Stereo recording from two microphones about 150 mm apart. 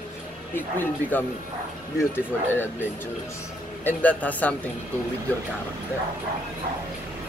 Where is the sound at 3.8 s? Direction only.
10° left (ahead or behind).